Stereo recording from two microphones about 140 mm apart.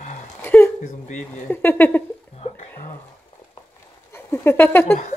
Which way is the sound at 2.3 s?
50° left (ahead or behind).